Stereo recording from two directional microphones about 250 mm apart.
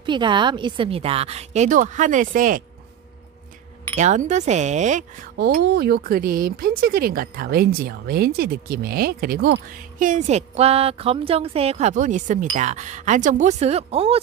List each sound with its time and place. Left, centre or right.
0.0 s a woman's voice: centre
3.9 s speech: right